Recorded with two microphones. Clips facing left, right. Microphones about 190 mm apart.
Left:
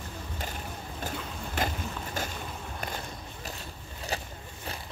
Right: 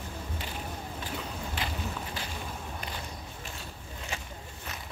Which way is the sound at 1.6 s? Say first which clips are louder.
Left 6 dB; 45° left (ahead or behind).